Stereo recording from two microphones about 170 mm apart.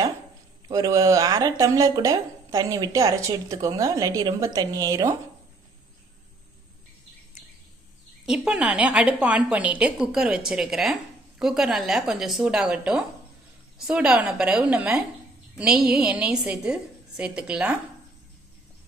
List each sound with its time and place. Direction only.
0.7 s speech: 20° right (ahead or behind)
8.3 s a woman's voice: 5° right (ahead or behind)